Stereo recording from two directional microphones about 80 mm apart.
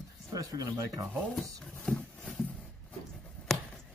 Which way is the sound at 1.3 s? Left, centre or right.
Centre.